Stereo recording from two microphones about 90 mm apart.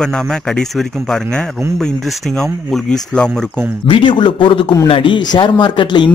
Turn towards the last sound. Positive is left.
turn(degrees=60)  # may be behind; listen again after turning